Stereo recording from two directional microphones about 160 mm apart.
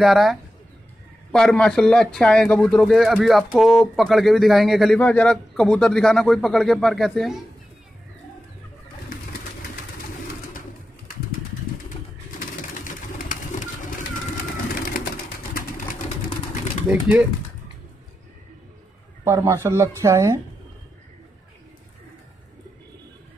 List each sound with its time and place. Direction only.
0.0 s speech: centre (ahead or behind)
12.7 s pigeon: 55° left (ahead or behind)
16.9 s speech: 5° right (ahead or behind)
19.2 s speech: 15° right (ahead or behind)